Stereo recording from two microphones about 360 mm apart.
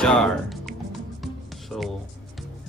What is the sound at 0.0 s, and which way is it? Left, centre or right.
Music, centre.